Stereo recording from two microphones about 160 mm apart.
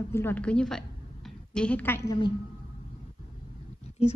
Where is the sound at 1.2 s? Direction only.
5° left (ahead or behind).